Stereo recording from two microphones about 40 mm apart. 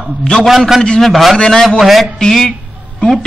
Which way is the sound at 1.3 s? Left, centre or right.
Centre.